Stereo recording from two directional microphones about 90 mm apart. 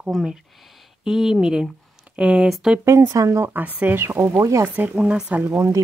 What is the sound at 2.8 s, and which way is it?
Speech, 35° right (ahead or behind).